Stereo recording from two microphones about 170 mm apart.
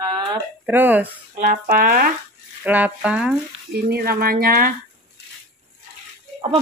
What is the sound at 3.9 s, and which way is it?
Speech, 60° right (ahead or behind).